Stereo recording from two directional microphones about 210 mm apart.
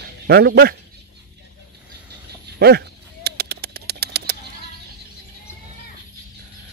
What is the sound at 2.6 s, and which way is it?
Bird, 50° right (ahead or behind).